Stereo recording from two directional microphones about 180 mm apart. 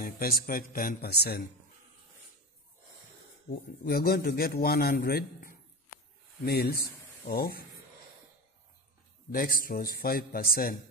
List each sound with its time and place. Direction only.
0.0 s a man's voice: 55° left (ahead or behind)
3.4 s a man's voice: 60° left (ahead or behind)
9.3 s a man's voice: 50° left (ahead or behind)